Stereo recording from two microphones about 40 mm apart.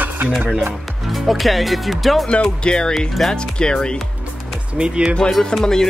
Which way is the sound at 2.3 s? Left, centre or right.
Left.